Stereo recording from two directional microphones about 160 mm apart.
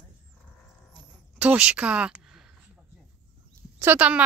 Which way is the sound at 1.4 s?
5° right (ahead or behind).